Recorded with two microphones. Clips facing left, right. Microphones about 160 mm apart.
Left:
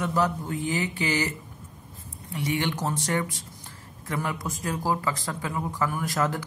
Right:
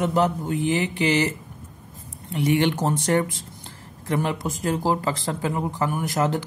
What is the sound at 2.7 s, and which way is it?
Speech, 30° right (ahead or behind).